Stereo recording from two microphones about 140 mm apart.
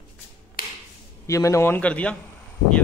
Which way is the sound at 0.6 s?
90° left.